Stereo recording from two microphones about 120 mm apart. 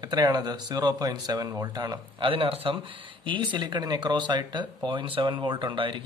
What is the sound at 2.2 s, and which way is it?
Speech, 50° right (ahead or behind).